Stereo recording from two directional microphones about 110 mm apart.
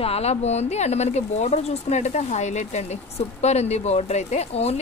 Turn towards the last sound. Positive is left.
turn(degrees=75)  # may be behind; listen again after turning